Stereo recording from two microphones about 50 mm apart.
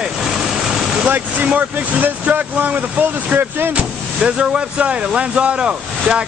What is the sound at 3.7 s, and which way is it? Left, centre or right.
Speech, right.